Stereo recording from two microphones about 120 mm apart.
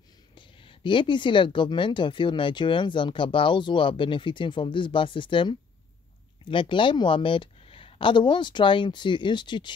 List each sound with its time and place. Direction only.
0.3 s speech: 45° left (ahead or behind)